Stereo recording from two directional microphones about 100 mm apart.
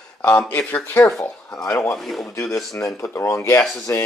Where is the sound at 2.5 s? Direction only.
30° left (ahead or behind).